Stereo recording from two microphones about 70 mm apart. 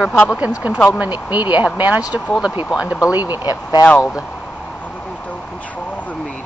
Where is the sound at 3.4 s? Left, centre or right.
Left.